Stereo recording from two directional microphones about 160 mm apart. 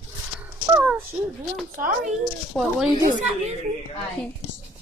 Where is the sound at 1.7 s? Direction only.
55° right (ahead or behind).